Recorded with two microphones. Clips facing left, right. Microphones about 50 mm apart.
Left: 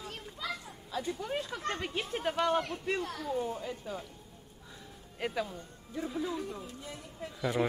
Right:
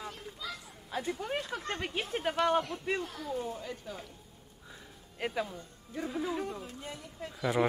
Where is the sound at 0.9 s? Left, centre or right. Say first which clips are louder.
Right 1 dB; right.